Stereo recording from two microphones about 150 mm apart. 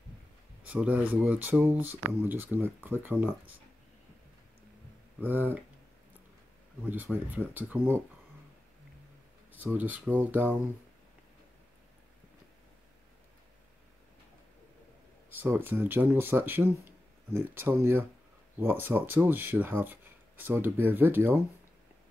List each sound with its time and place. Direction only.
0.7 s speech: 10° right (ahead or behind)
5.2 s speech: 10° right (ahead or behind)
6.8 s speech: 10° right (ahead or behind)
9.6 s speech: 10° right (ahead or behind)
15.2 s speech: 15° right (ahead or behind)